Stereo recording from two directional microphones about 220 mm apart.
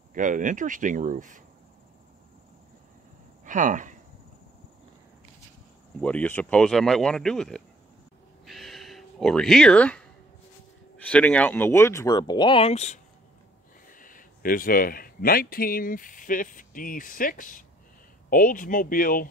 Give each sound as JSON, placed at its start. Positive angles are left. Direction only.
{"t": 0.1, "sound": "speech", "side_deg": -35}
{"t": 3.4, "sound": "speech", "side_deg": -35}
{"t": 5.9, "sound": "speech", "side_deg": 5}
{"t": 8.5, "sound": "a sound", "side_deg": 0}
{"t": 11.1, "sound": "speech", "side_deg": 5}